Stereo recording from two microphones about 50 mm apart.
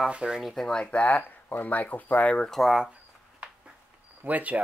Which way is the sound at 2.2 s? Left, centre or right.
Left.